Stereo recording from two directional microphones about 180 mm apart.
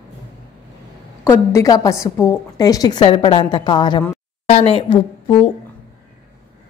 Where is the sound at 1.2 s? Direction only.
15° left (ahead or behind).